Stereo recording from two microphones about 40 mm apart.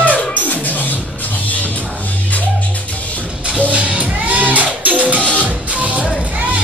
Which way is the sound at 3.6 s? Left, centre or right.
Right.